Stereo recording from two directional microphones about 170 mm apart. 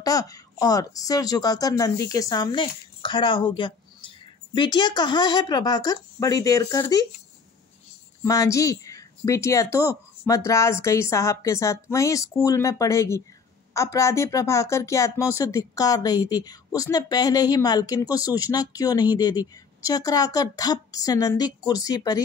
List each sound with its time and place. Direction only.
0.0 s a woman's voice: 20° left (ahead or behind)
8.2 s a woman's voice: 20° left (ahead or behind)